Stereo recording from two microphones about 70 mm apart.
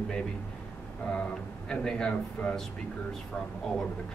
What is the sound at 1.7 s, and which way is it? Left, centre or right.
Speech, centre.